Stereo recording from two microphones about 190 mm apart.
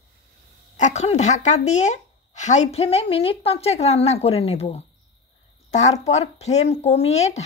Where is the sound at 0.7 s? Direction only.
40° left (ahead or behind).